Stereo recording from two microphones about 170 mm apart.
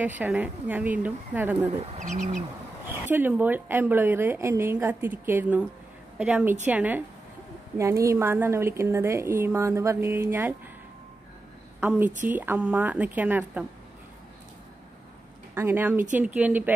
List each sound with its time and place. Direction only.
0.2 s a woman's voice: 10° right (ahead or behind)
1.8 s speech: 45° right (ahead or behind)
3.1 s a woman's voice: 10° right (ahead or behind)
12.3 s a woman's voice: 10° right (ahead or behind)
15.5 s a woman's voice: 15° right (ahead or behind)